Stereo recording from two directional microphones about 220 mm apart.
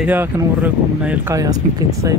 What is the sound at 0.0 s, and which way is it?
Speech, 10° right (ahead or behind).